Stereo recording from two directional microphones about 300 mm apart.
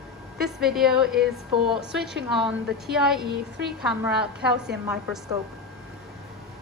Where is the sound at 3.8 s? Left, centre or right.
Centre.